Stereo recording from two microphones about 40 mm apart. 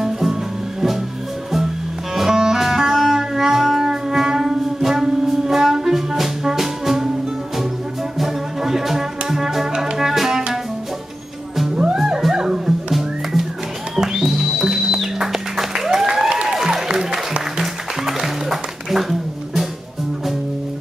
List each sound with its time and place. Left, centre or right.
0.0 s music: centre
2.1 s music: centre
8.2 s music: centre
11.7 s music: right
12.4 s music: centre
16.8 s applause: centre
17.6 s music: centre